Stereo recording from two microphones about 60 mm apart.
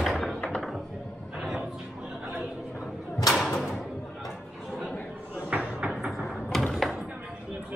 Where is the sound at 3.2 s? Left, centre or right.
Centre.